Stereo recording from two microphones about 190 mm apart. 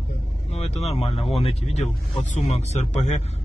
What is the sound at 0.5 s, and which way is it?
Speech, 35° left (ahead or behind).